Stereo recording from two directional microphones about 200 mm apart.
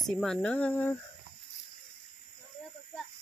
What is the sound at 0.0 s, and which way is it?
Speech, centre (ahead or behind).